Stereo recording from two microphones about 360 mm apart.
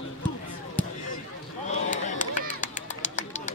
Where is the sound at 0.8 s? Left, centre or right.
Centre.